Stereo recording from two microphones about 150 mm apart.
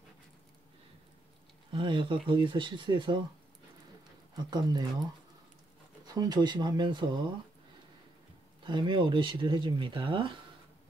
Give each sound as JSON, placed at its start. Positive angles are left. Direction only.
{"t": 1.7, "sound": "speech", "side_deg": -35}
{"t": 4.4, "sound": "speech", "side_deg": -30}
{"t": 6.0, "sound": "speech", "side_deg": -25}
{"t": 8.6, "sound": "speech", "side_deg": -30}